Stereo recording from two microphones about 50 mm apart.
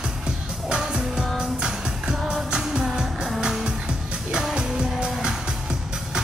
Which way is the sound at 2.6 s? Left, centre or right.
Centre.